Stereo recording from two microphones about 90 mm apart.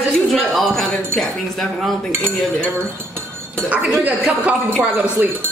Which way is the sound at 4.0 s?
15° right (ahead or behind).